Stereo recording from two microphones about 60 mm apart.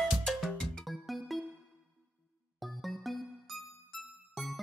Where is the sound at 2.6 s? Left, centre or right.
Centre.